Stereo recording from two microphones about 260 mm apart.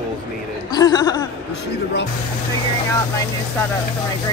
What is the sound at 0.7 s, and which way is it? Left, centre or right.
Speech, centre.